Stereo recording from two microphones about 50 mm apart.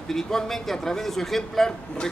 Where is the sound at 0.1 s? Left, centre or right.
Centre.